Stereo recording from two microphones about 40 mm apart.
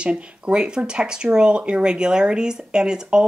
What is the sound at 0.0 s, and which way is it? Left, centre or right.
Speech, right.